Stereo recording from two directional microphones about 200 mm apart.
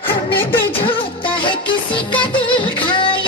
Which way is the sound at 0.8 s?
25° left (ahead or behind).